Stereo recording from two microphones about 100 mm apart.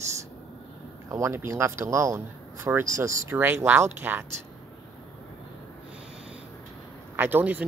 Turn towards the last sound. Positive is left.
turn(degrees=-15)  # may be behind; listen again after turning